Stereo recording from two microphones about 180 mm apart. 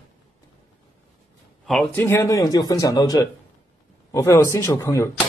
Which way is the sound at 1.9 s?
15° left (ahead or behind).